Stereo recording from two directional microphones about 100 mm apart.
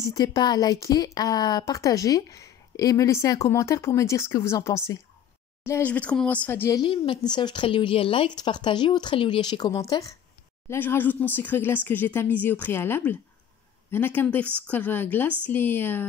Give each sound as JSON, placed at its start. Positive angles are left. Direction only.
{"t": 0.0, "sound": "a woman's voice", "side_deg": 35}
{"t": 5.7, "sound": "speech", "side_deg": 20}
{"t": 6.9, "sound": "speech", "side_deg": 50}
{"t": 8.4, "sound": "speech", "side_deg": 45}
{"t": 10.7, "sound": "speech", "side_deg": 20}